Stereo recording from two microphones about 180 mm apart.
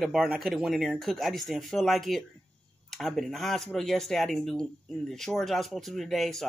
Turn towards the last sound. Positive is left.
turn(degrees=0)  # may be behind; listen again after turning